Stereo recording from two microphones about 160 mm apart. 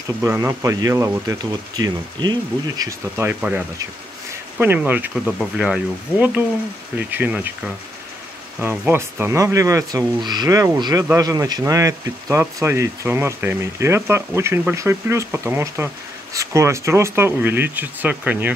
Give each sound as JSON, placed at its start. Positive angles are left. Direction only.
{"t": 0.2, "sound": "speech", "side_deg": -15}